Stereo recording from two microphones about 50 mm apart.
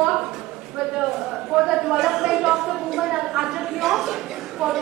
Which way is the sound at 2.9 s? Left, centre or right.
Centre.